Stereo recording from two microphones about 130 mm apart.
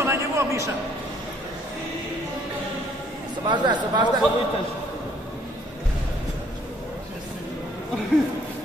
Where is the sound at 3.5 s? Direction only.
35° right (ahead or behind).